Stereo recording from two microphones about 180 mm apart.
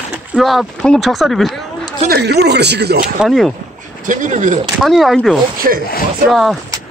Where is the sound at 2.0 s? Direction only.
65° right (ahead or behind).